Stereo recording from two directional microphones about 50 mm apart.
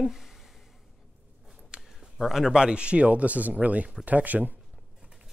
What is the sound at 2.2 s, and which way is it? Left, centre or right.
Speech, centre.